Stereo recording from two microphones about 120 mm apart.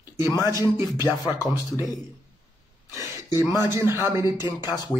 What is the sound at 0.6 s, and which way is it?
Speech, 30° left (ahead or behind).